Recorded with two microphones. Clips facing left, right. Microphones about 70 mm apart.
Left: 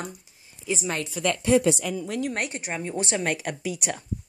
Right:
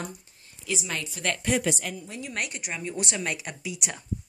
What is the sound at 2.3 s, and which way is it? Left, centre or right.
Speech, left.